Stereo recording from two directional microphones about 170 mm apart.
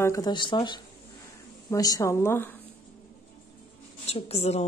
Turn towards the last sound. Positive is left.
turn(degrees=40)  # may be behind; listen again after turning